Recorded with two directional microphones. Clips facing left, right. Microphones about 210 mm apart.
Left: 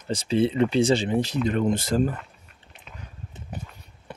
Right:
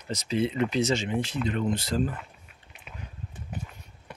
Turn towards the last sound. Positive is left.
turn(degrees=30)  # may be behind; listen again after turning